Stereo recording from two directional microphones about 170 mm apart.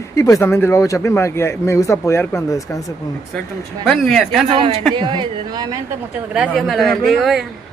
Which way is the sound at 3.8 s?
5° left (ahead or behind).